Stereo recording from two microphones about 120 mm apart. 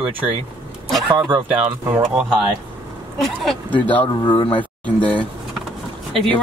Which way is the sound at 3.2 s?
Centre (ahead or behind).